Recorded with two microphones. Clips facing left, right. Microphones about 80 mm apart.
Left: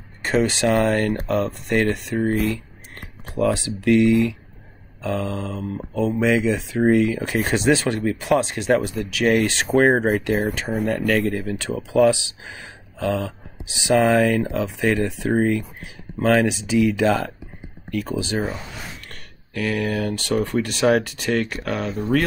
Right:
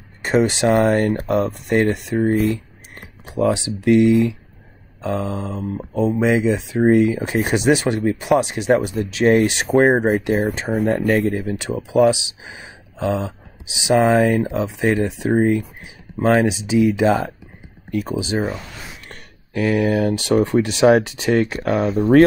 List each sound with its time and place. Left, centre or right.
0.2 s speech: right
10.7 s speech: right
11.1 s speech: right
19.8 s speech: centre
21.8 s speech: centre